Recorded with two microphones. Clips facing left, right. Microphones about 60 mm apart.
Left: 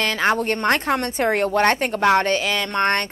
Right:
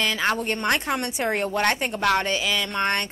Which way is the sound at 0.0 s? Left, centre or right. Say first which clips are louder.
Left 4 dB; left.